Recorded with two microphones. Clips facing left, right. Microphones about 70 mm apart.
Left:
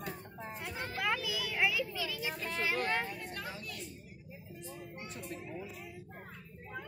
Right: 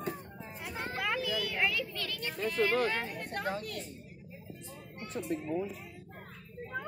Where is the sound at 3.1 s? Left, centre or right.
Right.